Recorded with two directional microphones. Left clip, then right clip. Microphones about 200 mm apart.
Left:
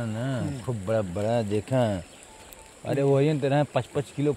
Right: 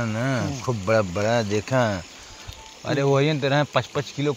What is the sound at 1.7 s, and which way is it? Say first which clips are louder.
Speech: right 3 dB; 5° left (ahead or behind).